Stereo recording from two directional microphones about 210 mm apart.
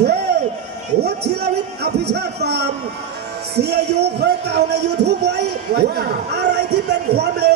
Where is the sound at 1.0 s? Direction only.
50° right (ahead or behind).